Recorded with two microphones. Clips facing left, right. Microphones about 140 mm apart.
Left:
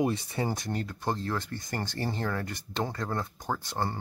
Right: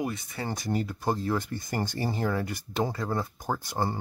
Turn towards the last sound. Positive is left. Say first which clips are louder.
# right 2 dB
turn(degrees=-10)  # may be behind; listen again after turning